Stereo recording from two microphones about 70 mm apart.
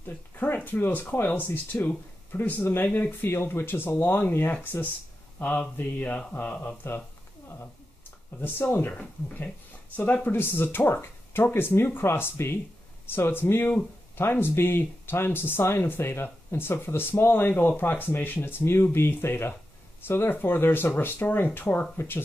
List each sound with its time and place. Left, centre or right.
0.0 s a sound: left
0.6 s speech: left
8.4 s speech: left